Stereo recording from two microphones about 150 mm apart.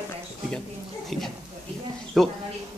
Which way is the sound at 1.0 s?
Centre (ahead or behind).